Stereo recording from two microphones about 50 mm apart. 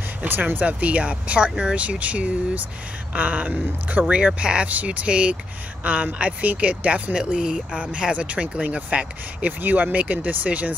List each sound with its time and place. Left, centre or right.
0.2 s speech: right
4.4 s speech: right